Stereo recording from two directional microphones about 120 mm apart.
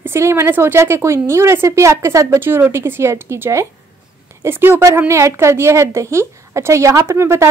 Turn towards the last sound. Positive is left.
turn(degrees=-20)  # may be behind; listen again after turning